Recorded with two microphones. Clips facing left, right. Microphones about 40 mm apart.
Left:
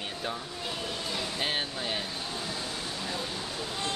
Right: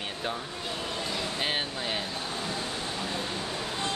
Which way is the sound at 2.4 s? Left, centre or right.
Right.